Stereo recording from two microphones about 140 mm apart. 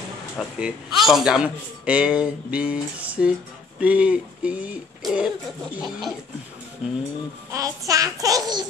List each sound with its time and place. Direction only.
0.4 s a man's voice: 5° right (ahead or behind)
5.8 s a sound: centre (ahead or behind)
7.5 s a child's voice: 25° right (ahead or behind)